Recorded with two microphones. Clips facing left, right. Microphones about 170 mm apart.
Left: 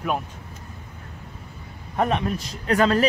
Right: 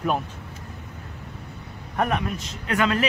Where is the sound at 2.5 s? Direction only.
35° left (ahead or behind).